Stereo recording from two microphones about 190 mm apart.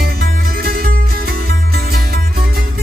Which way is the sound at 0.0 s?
55° right (ahead or behind).